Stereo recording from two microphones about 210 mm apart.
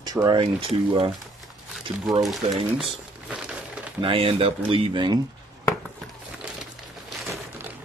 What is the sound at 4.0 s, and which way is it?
Speech, 25° right (ahead or behind).